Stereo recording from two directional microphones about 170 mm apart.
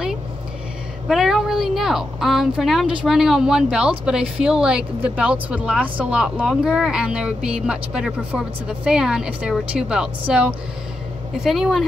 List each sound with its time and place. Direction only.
1.0 s speech: centre (ahead or behind)